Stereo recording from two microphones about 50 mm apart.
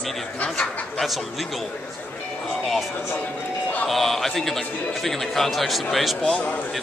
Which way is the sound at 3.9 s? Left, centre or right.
Centre.